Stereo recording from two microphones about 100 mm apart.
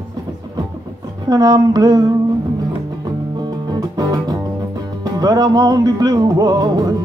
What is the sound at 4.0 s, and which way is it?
Music, 40° right (ahead or behind).